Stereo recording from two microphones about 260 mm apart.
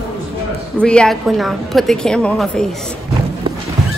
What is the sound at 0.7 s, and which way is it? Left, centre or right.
Speech, centre.